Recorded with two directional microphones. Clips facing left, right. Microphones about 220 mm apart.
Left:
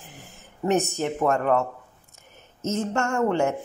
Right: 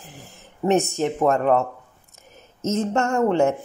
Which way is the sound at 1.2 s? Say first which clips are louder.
Right 3 dB; 35° right (ahead or behind).